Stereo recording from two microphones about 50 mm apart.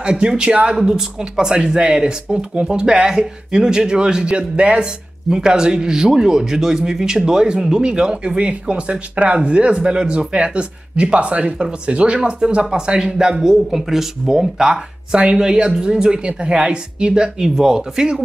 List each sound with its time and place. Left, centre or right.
0.0 s speech: centre